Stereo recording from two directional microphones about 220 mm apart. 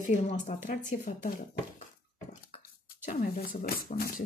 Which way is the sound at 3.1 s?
40° left (ahead or behind).